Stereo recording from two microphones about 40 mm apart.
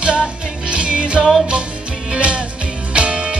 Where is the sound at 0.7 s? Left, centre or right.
Right.